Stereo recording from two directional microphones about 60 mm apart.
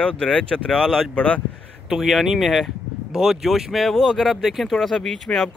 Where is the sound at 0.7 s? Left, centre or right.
Centre.